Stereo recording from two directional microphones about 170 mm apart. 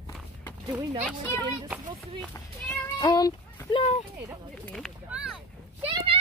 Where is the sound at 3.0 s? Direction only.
25° left (ahead or behind).